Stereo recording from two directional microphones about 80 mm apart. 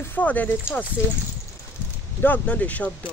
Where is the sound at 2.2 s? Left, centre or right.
Left.